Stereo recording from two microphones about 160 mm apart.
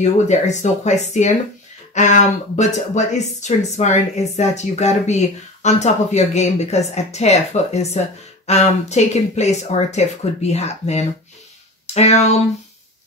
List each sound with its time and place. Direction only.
0.0 s speech: 45° left (ahead or behind)